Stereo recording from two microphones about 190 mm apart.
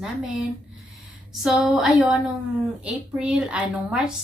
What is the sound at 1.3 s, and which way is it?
A woman's voice, centre (ahead or behind).